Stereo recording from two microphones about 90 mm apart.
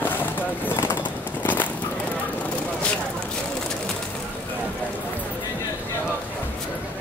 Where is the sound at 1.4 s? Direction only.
20° left (ahead or behind).